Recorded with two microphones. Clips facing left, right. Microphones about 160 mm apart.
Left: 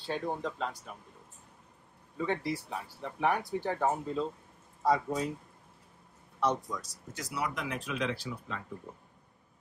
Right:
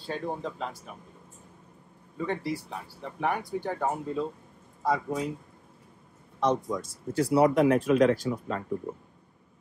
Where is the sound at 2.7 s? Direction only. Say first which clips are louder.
Even; 5° left (ahead or behind).